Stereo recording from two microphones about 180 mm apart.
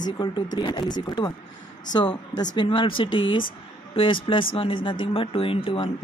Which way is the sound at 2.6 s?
25° left (ahead or behind).